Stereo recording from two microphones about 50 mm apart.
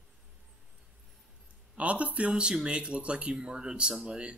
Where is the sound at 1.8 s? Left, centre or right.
Right; by 4.2 s centre.